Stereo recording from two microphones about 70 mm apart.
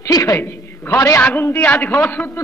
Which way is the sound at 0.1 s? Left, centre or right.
Left.